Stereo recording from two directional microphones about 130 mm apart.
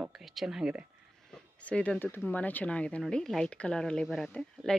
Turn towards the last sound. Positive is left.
turn(degrees=5)  # may be behind; listen again after turning